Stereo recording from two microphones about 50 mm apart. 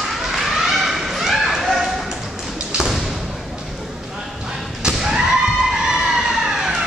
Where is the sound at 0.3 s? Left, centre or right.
Centre.